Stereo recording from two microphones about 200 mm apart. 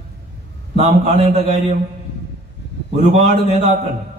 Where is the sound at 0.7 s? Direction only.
30° right (ahead or behind).